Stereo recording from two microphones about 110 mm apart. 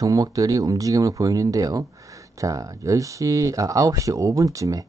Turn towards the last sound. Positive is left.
turn(degrees=-30)  # may be behind; listen again after turning